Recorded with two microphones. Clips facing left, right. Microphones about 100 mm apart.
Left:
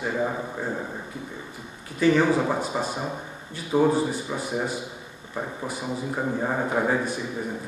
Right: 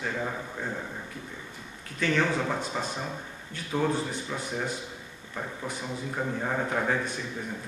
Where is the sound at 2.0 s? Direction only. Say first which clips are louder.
Left 7 dB; 10° left (ahead or behind).